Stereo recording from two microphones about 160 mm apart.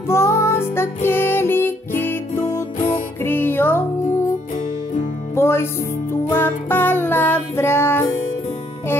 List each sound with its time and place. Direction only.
0.1 s music: 15° left (ahead or behind)
5.3 s music: 15° left (ahead or behind)